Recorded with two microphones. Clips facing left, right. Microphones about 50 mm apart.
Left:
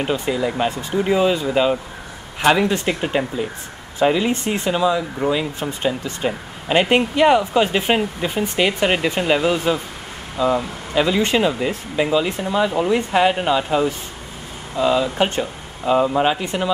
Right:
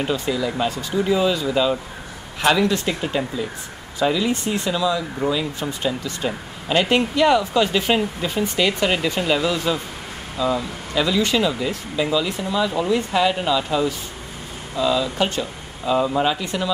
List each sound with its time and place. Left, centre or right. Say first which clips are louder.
0.0 s speech: left 2 dB; left